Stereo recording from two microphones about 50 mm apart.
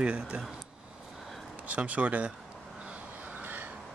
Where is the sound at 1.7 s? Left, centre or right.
Right.